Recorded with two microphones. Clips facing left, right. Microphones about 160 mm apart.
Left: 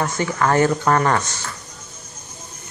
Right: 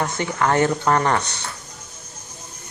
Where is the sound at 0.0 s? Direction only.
20° right (ahead or behind).